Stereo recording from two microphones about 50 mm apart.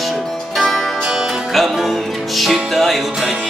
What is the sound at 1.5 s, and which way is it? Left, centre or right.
Music, centre.